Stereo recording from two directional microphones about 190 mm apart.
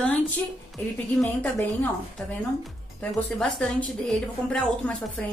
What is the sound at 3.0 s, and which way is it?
A woman's voice, 5° left (ahead or behind).